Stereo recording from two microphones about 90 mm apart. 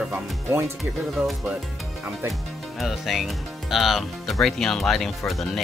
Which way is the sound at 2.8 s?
Centre (ahead or behind).